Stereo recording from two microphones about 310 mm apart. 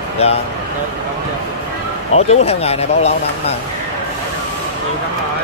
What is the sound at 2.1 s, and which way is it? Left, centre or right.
Speech, centre.